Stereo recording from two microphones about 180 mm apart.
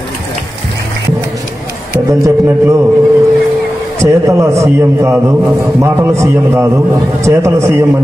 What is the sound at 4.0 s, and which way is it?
A man's voice, 15° right (ahead or behind).